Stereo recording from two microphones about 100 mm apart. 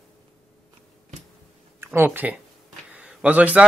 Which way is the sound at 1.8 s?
20° right (ahead or behind).